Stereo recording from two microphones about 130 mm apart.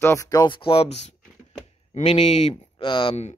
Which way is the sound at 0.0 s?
25° left (ahead or behind).